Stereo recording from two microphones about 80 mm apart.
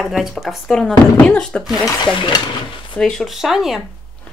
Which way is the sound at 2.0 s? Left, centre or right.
Left.